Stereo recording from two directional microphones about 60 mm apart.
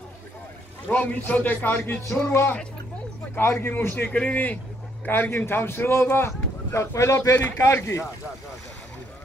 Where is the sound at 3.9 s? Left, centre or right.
Left.